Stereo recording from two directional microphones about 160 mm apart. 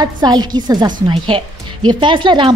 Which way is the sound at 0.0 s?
25° right (ahead or behind).